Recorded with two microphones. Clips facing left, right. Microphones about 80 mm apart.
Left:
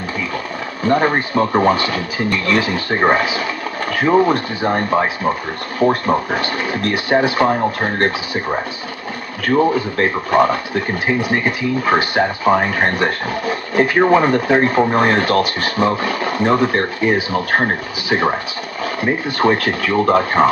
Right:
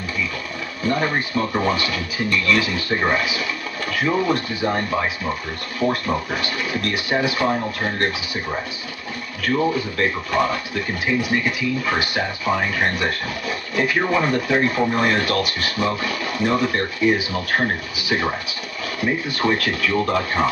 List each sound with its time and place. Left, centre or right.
0.8 s speech: left